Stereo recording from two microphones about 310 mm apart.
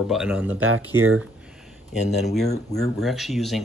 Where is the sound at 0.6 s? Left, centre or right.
Right.